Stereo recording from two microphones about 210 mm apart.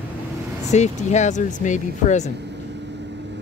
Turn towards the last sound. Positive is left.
turn(degrees=-55)  # may be behind; listen again after turning